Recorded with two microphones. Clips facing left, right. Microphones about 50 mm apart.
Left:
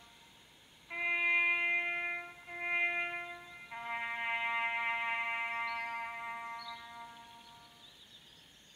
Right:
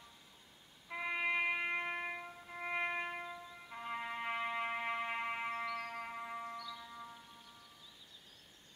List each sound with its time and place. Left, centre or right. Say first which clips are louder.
0.8 s music: left 4 dB; left
1.6 s music: left 4 dB; left
3.7 s music: left 3 dB; left
6.5 s music: left 1 dB; centre